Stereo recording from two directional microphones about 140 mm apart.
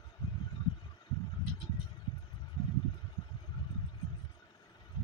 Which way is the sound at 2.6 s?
30° left (ahead or behind).